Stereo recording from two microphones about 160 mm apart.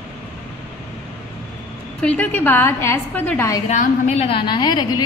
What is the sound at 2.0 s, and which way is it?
A woman's voice, 10° left (ahead or behind).